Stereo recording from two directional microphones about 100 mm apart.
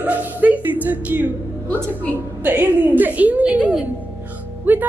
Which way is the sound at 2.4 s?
20° right (ahead or behind).